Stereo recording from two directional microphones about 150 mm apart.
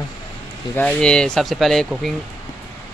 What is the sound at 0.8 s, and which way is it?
Speech, 5° left (ahead or behind).